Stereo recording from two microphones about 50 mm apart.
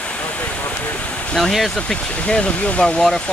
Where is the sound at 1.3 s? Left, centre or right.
Centre.